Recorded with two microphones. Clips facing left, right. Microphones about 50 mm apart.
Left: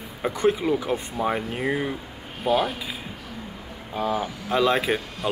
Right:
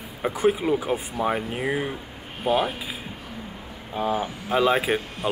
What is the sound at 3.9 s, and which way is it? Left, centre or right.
Speech, centre.